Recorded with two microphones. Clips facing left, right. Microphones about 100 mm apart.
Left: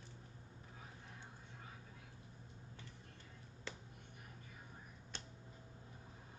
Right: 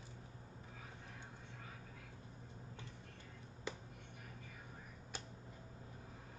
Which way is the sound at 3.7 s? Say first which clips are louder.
Right 5 dB; 15° right (ahead or behind).